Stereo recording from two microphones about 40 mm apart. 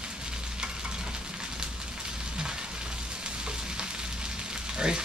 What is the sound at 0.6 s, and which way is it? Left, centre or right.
Frying, right.